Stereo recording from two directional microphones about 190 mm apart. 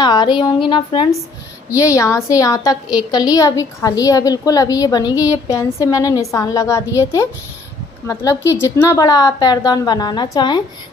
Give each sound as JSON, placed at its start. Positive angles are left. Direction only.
{"t": 0.0, "sound": "a woman's voice", "side_deg": 20}